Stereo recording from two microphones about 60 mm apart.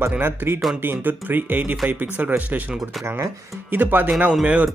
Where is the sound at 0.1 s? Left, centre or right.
Right.